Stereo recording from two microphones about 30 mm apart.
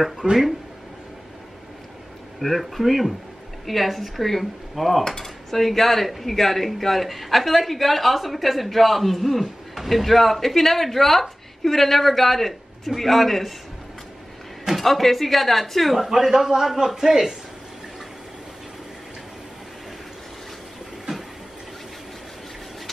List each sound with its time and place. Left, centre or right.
0.2 s speech: centre
2.4 s speech: centre
14.7 s speech: centre
16.0 s a man's voice: centre